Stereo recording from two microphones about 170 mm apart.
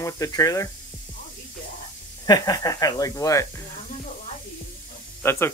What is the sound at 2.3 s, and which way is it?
Speech, 20° left (ahead or behind).